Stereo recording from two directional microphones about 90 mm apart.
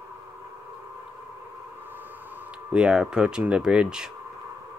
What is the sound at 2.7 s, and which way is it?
Speech, 10° right (ahead or behind).